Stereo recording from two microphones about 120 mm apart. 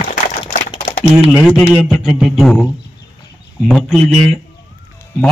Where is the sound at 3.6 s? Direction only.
Centre (ahead or behind).